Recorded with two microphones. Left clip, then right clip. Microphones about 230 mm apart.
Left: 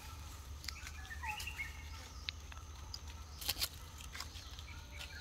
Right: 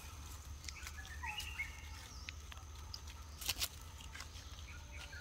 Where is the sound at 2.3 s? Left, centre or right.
Left.